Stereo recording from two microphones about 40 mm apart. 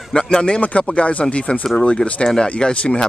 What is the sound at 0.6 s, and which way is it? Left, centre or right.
Speech, left.